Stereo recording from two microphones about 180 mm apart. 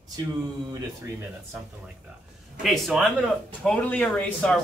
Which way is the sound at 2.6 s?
Centre (ahead or behind).